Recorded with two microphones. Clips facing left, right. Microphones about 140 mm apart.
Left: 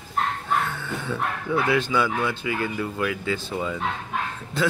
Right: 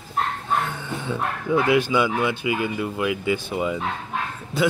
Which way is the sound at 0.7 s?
15° right (ahead or behind).